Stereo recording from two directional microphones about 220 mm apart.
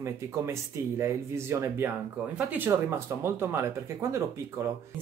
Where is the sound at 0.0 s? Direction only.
10° right (ahead or behind).